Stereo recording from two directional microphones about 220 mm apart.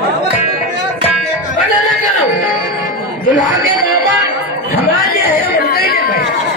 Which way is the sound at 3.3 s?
35° left (ahead or behind).